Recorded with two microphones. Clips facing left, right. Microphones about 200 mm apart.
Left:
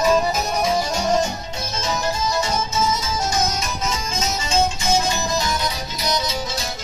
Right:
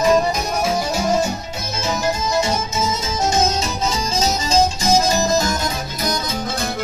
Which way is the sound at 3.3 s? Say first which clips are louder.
Right 6 dB; 30° right (ahead or behind).